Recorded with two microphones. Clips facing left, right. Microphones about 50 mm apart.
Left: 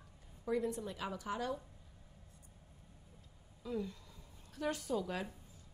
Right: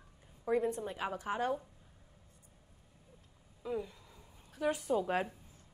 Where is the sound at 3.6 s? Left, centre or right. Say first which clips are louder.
Right 2 dB; centre.